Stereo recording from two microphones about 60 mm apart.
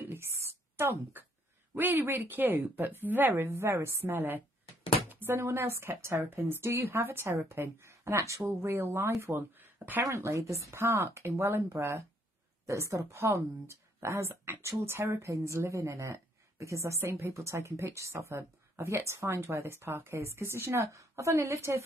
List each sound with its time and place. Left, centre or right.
0.0 s a sound: right
1.8 s speech: right
3.4 s a woman's voice: right
4.0 s a woman's voice: right
7.9 s a woman's voice: right
9.6 s a sound: right
10.1 s a woman's voice: right
12.6 s a woman's voice: right
15.2 s a woman's voice: right